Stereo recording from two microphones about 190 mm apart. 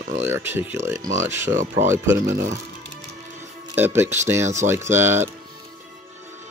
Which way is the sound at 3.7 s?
10° right (ahead or behind).